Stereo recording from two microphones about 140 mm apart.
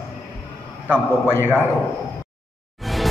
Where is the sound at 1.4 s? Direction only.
15° right (ahead or behind).